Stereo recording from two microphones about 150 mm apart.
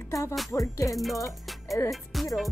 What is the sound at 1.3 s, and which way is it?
Music, centre (ahead or behind).